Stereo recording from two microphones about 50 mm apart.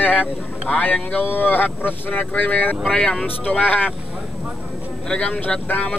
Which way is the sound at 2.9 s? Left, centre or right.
Left.